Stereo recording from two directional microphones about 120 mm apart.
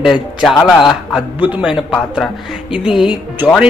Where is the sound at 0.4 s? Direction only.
Centre (ahead or behind).